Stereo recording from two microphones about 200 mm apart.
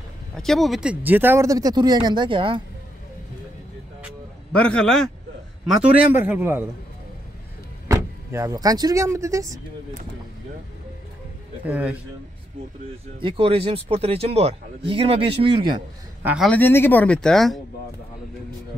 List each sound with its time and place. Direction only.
0.3 s speech: centre (ahead or behind); by 2.6 s 25° right (ahead or behind)
4.5 s a man's voice: 5° left (ahead or behind)
6.1 s speech: 10° right (ahead or behind)
7.9 s speech: 15° right (ahead or behind)
11.6 s speech: 5° right (ahead or behind)
13.2 s speech: 25° right (ahead or behind)
16.2 s a man's voice: 10° right (ahead or behind)
16.4 s speech: 10° left (ahead or behind)